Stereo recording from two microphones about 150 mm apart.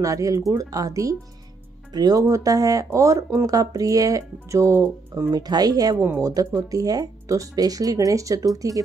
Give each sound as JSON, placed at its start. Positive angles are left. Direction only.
{"t": 0.0, "sound": "speech", "side_deg": -20}